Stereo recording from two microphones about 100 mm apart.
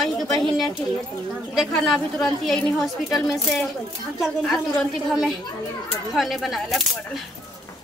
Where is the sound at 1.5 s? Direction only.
Centre (ahead or behind).